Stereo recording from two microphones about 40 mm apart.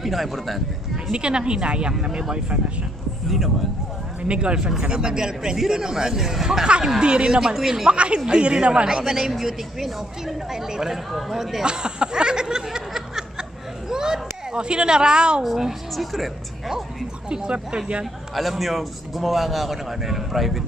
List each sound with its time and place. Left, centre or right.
0.0 s a man's voice: centre
1.1 s speech: right
3.3 s a man's voice: centre
4.2 s speech: right
7.9 s a man's voice: right; by 11.6 s centre
11.6 s a sound: right
15.4 s a man's voice: centre
17.3 s speech: right
18.3 s a man's voice: centre